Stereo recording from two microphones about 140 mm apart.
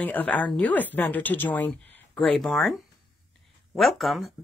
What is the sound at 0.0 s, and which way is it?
Speech, 10° left (ahead or behind).